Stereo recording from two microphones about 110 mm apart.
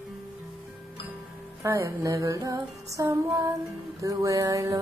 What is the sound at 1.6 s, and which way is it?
Female singing, 25° right (ahead or behind).